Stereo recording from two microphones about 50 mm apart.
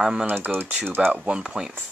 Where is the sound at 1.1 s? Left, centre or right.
Right.